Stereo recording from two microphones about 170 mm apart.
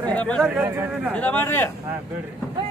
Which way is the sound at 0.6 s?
15° right (ahead or behind).